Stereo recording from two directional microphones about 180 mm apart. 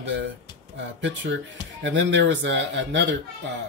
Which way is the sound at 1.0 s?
85° right.